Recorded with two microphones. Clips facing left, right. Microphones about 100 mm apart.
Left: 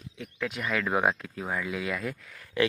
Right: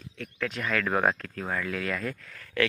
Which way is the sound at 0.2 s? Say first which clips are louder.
Right 1 dB; 15° left (ahead or behind).